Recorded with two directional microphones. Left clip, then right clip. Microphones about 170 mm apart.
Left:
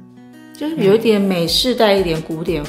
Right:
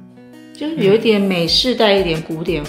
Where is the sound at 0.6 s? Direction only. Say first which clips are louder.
Even; centre (ahead or behind).